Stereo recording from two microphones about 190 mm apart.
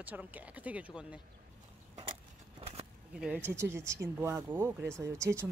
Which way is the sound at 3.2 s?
5° right (ahead or behind).